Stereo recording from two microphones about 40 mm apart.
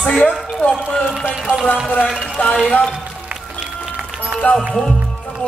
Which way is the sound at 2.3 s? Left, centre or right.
Left.